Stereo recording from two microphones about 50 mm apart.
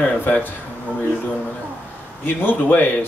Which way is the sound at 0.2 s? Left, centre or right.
Left.